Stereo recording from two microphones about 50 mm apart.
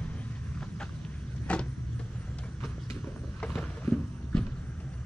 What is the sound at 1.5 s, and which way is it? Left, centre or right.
Vehicle, left.